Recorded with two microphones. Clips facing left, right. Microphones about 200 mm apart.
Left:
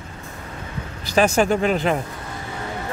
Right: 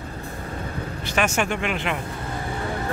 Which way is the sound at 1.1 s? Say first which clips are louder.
Left 6 dB; 35° left (ahead or behind).